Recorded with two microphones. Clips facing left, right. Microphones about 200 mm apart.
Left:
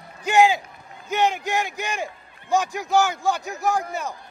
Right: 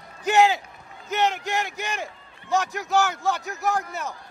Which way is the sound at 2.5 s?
15° left (ahead or behind).